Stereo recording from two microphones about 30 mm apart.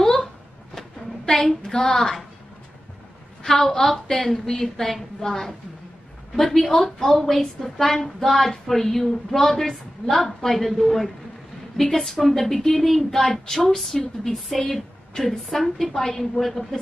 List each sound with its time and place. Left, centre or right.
1.7 s a child's voice: left
3.4 s a woman's voice: centre
14.6 s a sound: left
15.2 s speech: centre